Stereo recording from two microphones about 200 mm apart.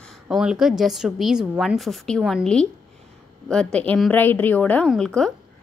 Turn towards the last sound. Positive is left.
turn(degrees=5)  # may be behind; listen again after turning